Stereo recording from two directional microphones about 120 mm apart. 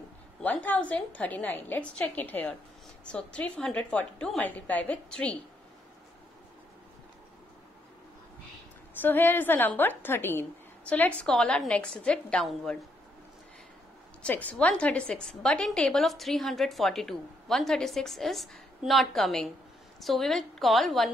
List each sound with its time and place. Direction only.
0.4 s a woman's voice: 15° left (ahead or behind)
9.0 s a woman's voice: 15° left (ahead or behind)
14.2 s a woman's voice: 10° left (ahead or behind)